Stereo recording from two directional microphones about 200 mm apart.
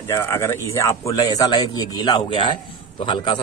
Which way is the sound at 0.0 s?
15° left (ahead or behind).